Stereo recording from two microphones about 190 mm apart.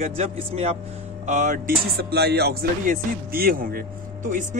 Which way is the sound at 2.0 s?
55° right (ahead or behind).